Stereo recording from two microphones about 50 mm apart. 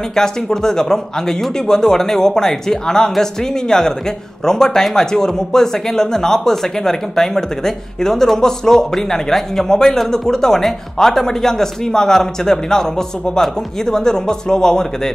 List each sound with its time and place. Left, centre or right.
0.1 s speech: centre